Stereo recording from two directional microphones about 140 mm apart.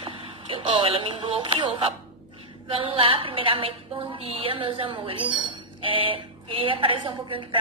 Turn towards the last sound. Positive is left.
turn(degrees=-35)  # may be behind; listen again after turning